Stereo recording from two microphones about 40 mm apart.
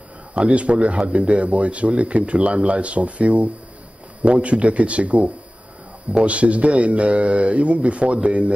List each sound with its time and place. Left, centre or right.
0.3 s speech: right